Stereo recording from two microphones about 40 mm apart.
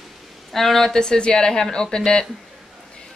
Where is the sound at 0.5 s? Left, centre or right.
Centre.